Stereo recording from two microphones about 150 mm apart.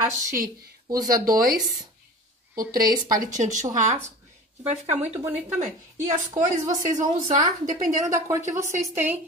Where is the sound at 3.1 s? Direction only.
60° right (ahead or behind).